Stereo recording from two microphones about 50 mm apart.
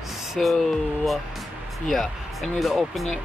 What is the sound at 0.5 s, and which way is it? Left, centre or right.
Speech, centre.